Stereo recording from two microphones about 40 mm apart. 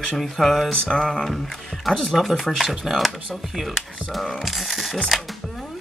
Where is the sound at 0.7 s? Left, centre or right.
Centre.